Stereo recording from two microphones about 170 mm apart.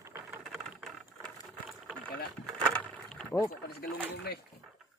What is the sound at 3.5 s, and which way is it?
Rowboat, 70° left (ahead or behind).